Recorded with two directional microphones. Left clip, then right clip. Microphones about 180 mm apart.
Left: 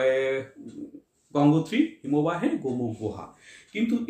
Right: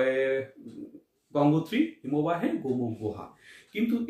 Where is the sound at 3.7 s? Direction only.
25° left (ahead or behind).